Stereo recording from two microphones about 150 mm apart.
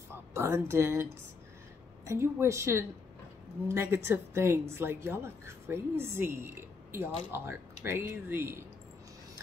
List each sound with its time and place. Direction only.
0.3 s a woman's voice: 20° right (ahead or behind)
2.0 s a woman's voice: 20° right (ahead or behind)